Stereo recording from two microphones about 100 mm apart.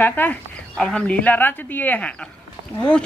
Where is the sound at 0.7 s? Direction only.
10° left (ahead or behind).